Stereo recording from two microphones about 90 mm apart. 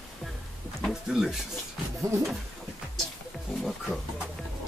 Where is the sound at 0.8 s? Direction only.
5° right (ahead or behind).